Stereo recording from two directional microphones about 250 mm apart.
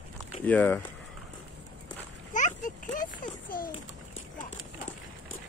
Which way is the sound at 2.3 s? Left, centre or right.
Left.